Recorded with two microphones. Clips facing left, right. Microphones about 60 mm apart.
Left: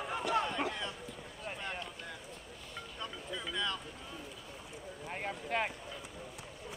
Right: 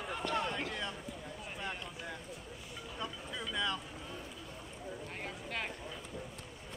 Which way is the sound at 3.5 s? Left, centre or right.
Centre.